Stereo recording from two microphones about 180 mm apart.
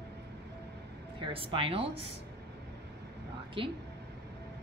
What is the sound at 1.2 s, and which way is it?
Speech, 30° right (ahead or behind).